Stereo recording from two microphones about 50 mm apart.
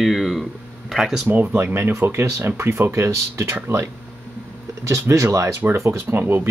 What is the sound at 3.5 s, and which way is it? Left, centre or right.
Speech, right.